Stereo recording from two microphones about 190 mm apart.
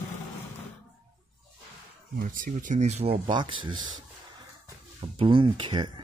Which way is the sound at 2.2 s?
45° right (ahead or behind).